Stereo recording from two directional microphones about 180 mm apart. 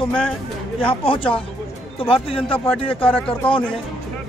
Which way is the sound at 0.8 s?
30° left (ahead or behind).